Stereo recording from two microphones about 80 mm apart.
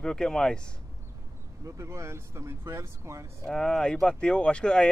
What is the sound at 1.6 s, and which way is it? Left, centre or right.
Speech, right.